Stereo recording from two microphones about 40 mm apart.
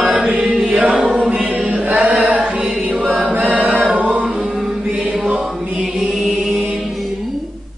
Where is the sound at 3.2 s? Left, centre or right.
Right.